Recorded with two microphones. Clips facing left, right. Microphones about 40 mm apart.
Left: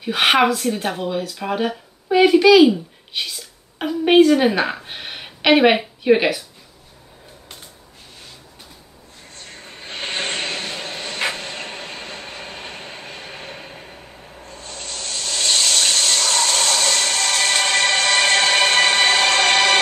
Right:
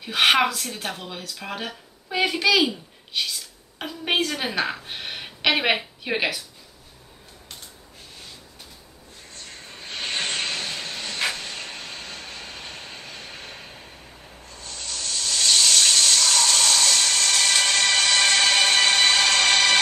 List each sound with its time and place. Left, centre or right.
0.0 s speech: centre
9.7 s vehicle: left
14.5 s a sound: left